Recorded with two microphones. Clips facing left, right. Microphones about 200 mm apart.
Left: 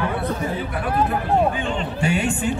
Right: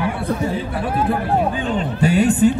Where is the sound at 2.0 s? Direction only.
40° right (ahead or behind).